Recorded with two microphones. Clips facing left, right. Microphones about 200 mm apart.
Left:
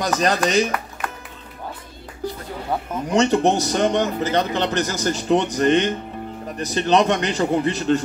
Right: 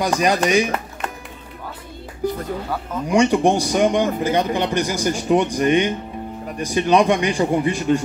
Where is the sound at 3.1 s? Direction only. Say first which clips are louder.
Right 2 dB; 10° right (ahead or behind).